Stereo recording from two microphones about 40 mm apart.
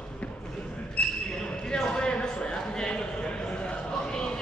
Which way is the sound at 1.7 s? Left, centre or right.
Left.